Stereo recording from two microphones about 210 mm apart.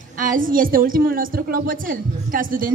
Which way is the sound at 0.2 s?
40° right (ahead or behind).